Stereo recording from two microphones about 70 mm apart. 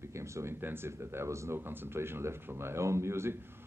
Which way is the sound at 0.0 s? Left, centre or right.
Right.